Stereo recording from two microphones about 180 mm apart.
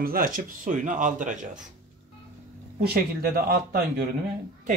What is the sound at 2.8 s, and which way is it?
Speech, 60° right (ahead or behind).